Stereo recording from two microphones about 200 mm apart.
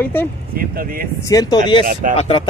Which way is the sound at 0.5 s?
45° right (ahead or behind).